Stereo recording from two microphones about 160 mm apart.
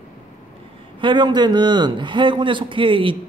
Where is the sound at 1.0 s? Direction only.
30° right (ahead or behind).